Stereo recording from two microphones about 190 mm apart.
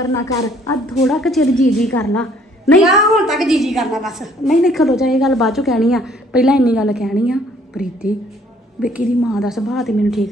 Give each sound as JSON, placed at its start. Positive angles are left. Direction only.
{"t": 0.0, "sound": "a woman's voice", "side_deg": 15}
{"t": 0.8, "sound": "a woman's voice", "side_deg": 0}